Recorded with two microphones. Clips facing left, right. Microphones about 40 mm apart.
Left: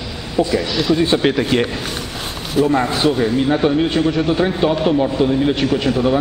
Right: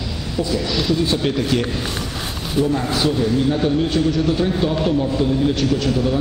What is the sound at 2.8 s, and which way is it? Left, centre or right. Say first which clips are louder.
A man's voice: left 3 dB; left.